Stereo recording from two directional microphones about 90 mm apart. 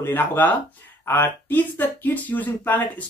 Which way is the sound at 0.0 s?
25° left (ahead or behind).